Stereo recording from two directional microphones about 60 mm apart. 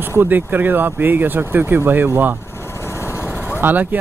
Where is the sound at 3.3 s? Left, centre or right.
Right.